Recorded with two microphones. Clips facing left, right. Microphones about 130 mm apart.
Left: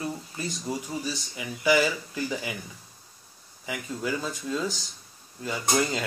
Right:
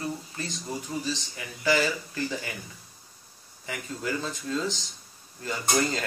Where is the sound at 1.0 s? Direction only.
15° left (ahead or behind).